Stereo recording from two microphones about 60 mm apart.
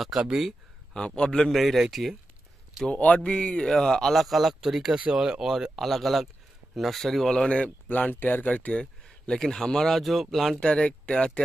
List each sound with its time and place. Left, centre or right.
0.0 s speech: centre
0.9 s speech: centre
1.5 s speech: centre
2.9 s speech: left; by 5.7 s centre
5.8 s speech: centre; by 8.5 s left
8.5 s speech: left; by 10.6 s centre
10.6 s speech: centre